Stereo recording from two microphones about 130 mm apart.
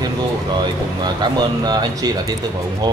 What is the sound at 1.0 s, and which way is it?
Speech, 30° right (ahead or behind).